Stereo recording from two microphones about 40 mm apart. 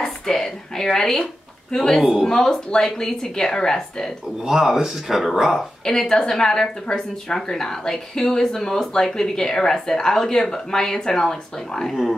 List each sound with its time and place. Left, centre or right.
0.0 s a woman's voice: centre
1.2 s a sound: centre
2.0 s speech: centre
2.2 s a woman's voice: centre
4.5 s speech: centre
5.9 s a woman's voice: centre